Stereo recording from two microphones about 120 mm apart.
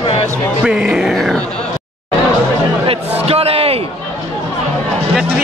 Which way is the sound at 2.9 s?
55° right (ahead or behind).